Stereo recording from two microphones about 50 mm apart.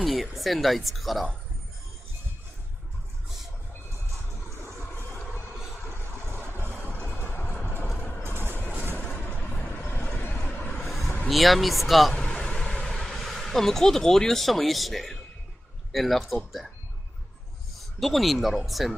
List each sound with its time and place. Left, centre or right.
0.0 s speech: centre
6.5 s vehicle: left
6.9 s vehicle: left
8.9 s vehicle: left
10.4 s a sound: left
11.2 s speech: centre
12.1 s vehicle: centre
12.9 s speech: centre
18.0 s speech: centre